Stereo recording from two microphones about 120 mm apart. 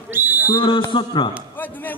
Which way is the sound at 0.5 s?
45° left (ahead or behind).